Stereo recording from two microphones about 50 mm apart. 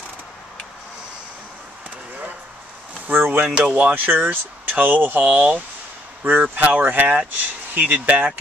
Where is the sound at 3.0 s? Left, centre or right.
Right.